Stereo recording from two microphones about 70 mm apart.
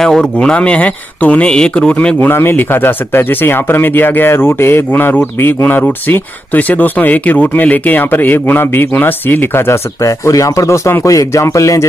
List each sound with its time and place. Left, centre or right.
0.0 s speech: centre
2.1 s speech: left
10.0 s speech: left